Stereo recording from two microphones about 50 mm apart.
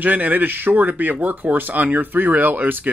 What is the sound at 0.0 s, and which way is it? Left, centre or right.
Speech, right.